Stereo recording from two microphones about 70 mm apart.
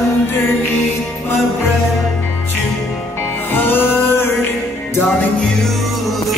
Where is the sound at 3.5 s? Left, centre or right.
Left.